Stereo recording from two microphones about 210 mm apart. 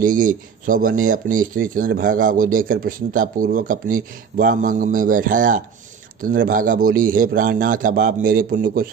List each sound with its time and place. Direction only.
0.0 s speech: 40° right (ahead or behind)